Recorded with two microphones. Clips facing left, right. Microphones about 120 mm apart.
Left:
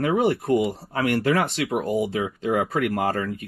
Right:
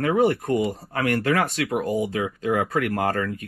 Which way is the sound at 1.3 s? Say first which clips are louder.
Even; 25° left (ahead or behind).